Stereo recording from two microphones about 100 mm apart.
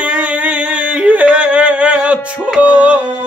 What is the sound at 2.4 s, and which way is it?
Music, 10° right (ahead or behind).